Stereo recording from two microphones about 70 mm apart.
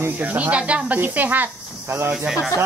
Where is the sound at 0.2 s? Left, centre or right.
Right.